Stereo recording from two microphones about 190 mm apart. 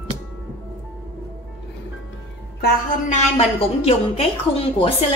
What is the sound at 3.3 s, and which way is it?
A woman's voice, 30° left (ahead or behind).